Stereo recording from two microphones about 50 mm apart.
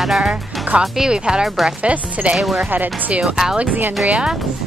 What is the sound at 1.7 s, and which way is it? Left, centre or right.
Speech, right.